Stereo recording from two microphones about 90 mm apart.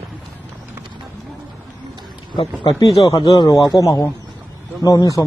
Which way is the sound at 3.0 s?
45° left (ahead or behind).